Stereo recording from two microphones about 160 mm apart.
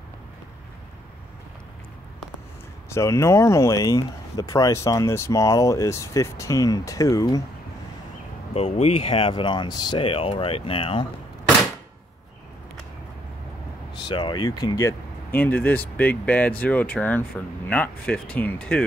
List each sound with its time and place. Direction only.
2.9 s speech: 15° left (ahead or behind)
8.5 s speech: 40° left (ahead or behind)
14.0 s speech: 30° left (ahead or behind); by 18.9 s 10° left (ahead or behind)